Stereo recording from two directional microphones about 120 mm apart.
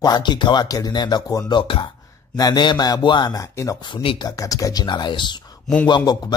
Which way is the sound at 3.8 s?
40° left (ahead or behind).